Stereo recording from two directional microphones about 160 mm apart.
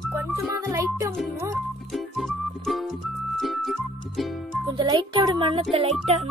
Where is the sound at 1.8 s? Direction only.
Centre (ahead or behind).